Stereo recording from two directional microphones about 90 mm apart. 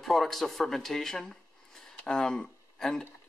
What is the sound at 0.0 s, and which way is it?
Speech, centre (ahead or behind).